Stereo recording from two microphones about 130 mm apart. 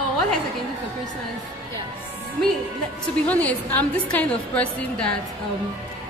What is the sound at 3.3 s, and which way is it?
A woman's voice, 10° left (ahead or behind).